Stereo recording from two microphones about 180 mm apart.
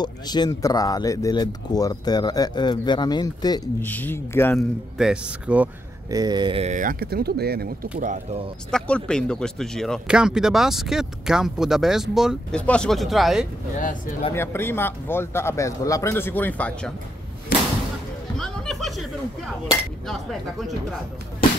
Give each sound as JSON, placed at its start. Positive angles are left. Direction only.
{"t": 0.0, "sound": "speech", "side_deg": 25}
{"t": 3.8, "sound": "speech", "side_deg": 10}
{"t": 4.9, "sound": "speech", "side_deg": -5}
{"t": 6.0, "sound": "speech", "side_deg": -20}
{"t": 8.0, "sound": "speech", "side_deg": -45}
{"t": 8.7, "sound": "speech", "side_deg": 5}
{"t": 14.3, "sound": "speech", "side_deg": 15}
{"t": 18.4, "sound": "a sound", "side_deg": 0}
{"t": 20.1, "sound": "speech", "side_deg": 0}